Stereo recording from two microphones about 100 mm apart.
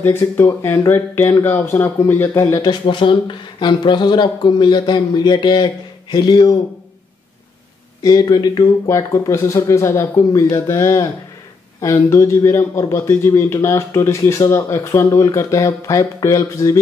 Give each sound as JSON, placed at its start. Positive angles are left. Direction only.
{"t": 0.0, "sound": "a man's voice", "side_deg": 20}
{"t": 2.6, "sound": "speech", "side_deg": 55}
{"t": 8.0, "sound": "a man's voice", "side_deg": 40}